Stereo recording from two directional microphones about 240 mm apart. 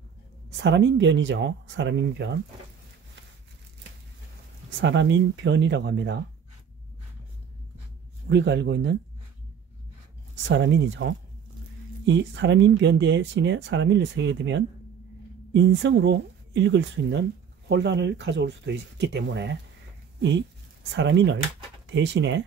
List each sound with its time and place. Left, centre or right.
0.6 s speech: right
4.8 s speech: right
8.3 s speech: right
10.5 s speech: right
20.9 s speech: right